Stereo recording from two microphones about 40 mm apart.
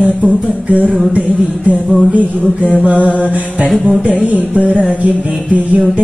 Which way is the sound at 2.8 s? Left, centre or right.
Right.